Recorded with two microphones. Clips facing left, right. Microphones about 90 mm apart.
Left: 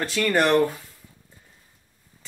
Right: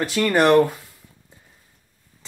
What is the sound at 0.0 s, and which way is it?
Speech, 10° right (ahead or behind).